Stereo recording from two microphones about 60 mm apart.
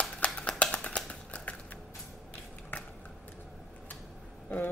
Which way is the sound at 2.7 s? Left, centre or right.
Left.